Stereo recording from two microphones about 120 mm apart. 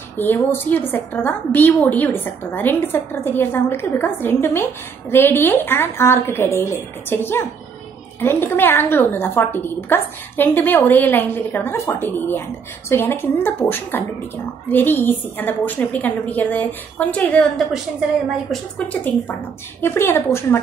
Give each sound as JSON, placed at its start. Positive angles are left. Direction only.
{"t": 0.2, "sound": "a woman's voice", "side_deg": 15}
{"t": 18.9, "sound": "a woman's voice", "side_deg": 15}